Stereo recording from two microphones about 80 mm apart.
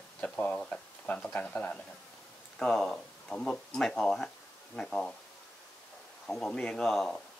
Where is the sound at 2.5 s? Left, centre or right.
Centre.